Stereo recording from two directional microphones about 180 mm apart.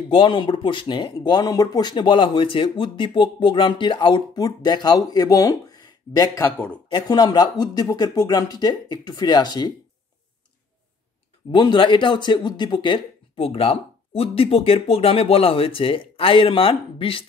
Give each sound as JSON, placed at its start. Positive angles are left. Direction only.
{"t": 0.1, "sound": "speech", "side_deg": 30}
{"t": 11.5, "sound": "speech", "side_deg": 25}